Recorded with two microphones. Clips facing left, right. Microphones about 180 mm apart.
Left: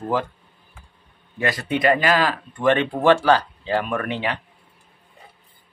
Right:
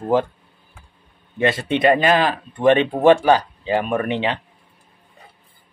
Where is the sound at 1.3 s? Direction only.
25° right (ahead or behind).